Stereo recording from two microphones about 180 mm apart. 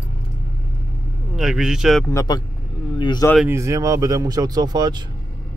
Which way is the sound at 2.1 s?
20° left (ahead or behind).